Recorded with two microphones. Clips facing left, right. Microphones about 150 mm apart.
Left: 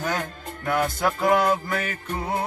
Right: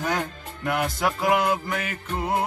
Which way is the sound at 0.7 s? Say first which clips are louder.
Left 1 dB; 10° right (ahead or behind).